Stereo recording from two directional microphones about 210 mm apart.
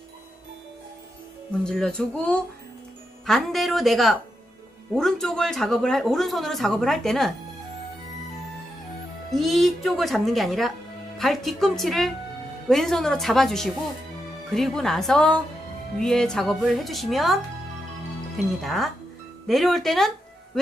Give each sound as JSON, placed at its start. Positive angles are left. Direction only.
{"t": 1.6, "sound": "speech", "side_deg": 5}
{"t": 9.3, "sound": "speech", "side_deg": 0}
{"t": 18.6, "sound": "speech", "side_deg": 0}